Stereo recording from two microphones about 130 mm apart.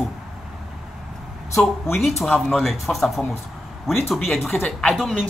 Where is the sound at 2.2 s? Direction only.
Centre (ahead or behind).